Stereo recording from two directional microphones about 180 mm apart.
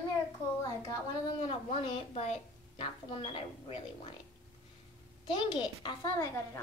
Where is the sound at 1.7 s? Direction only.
35° left (ahead or behind).